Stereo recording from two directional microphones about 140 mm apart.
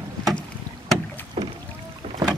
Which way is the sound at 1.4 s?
40° right (ahead or behind).